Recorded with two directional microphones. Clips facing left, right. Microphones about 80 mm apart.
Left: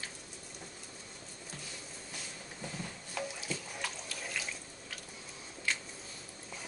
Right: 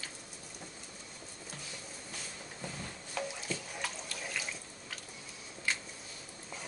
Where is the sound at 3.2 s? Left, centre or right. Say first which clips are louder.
Right 1 dB; centre.